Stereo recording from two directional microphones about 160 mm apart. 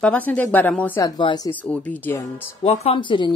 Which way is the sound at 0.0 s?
10° left (ahead or behind).